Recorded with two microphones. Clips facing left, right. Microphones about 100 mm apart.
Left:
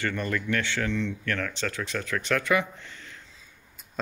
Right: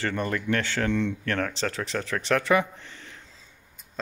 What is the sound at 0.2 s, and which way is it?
Speech, 35° right (ahead or behind).